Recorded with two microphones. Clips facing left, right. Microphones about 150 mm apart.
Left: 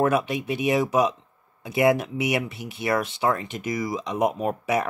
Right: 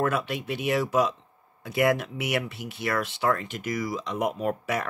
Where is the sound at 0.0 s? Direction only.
15° left (ahead or behind).